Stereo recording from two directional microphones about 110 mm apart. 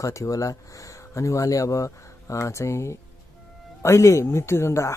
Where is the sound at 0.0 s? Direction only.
30° left (ahead or behind).